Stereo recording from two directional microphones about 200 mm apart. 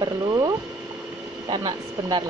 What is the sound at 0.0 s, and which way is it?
Speech, 20° right (ahead or behind).